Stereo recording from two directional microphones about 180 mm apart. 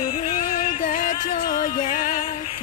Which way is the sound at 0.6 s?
45° left (ahead or behind).